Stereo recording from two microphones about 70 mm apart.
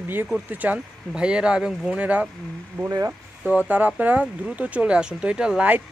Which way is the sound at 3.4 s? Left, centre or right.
Right.